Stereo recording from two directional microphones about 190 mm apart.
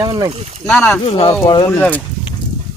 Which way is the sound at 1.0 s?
30° left (ahead or behind).